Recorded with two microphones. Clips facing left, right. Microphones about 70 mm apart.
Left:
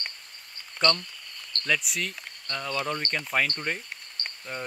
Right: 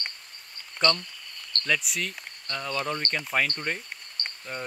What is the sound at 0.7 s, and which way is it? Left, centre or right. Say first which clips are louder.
Speech: even; centre.